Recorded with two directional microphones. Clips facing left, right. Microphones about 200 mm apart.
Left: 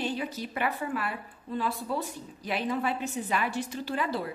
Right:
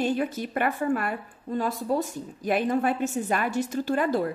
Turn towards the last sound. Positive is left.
turn(degrees=-50)  # may be behind; listen again after turning